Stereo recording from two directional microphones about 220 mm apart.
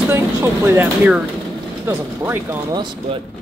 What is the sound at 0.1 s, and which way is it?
Speech, 10° right (ahead or behind).